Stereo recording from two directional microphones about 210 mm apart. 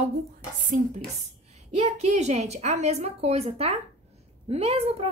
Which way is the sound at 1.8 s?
30° right (ahead or behind).